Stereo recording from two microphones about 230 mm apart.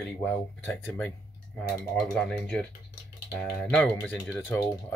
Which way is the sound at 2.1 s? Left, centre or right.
Centre.